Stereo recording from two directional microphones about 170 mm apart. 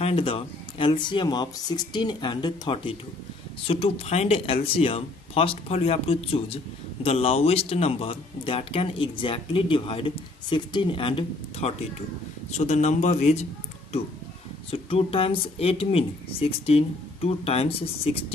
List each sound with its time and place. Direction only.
0.0 s speech: 35° left (ahead or behind)
14.7 s speech: 35° left (ahead or behind)